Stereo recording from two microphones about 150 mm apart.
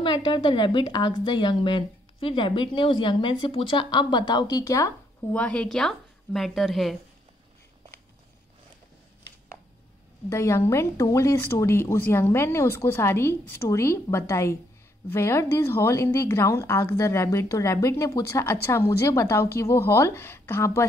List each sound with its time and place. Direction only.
0.0 s a woman's voice: 30° left (ahead or behind)
5.3 s a woman's voice: 10° left (ahead or behind)
10.3 s a woman's voice: 20° left (ahead or behind)